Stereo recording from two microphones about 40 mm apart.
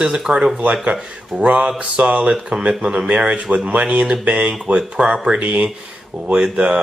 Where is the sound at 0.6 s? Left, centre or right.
Right.